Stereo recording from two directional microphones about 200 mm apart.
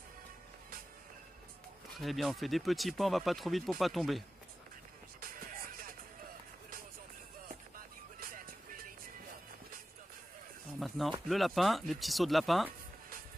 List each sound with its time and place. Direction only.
2.0 s speech: centre (ahead or behind)
5.2 s music: 45° right (ahead or behind)
8.2 s music: 45° right (ahead or behind)
10.8 s speech: centre (ahead or behind)